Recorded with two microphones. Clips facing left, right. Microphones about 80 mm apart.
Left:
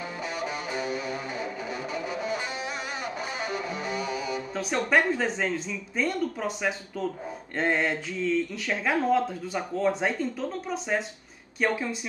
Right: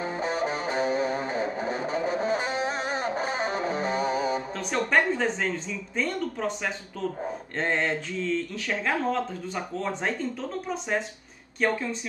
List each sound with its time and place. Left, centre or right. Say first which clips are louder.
0.0 s music: right 5 dB; right
4.6 s speech: left 2 dB; centre